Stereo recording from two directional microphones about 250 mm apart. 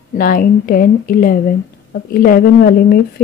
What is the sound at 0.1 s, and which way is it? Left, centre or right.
Speech, left.